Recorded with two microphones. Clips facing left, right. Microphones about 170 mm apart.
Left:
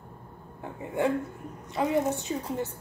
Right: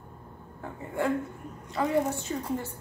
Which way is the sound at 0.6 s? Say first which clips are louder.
Left 2 dB; 20° left (ahead or behind).